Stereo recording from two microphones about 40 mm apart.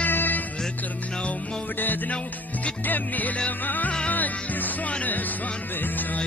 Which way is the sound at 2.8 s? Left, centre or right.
Left.